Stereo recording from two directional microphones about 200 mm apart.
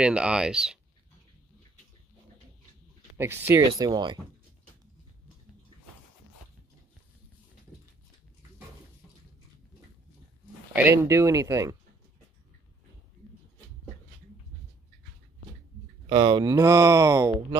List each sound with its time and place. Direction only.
0.0 s speech: 5° right (ahead or behind)
3.2 s speech: 10° right (ahead or behind)
10.7 s speech: 10° right (ahead or behind)
16.1 s speech: 20° right (ahead or behind)